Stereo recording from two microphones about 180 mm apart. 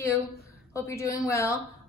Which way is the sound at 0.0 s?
15° left (ahead or behind).